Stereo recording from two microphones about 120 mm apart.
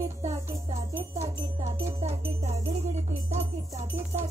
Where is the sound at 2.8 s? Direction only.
70° right (ahead or behind).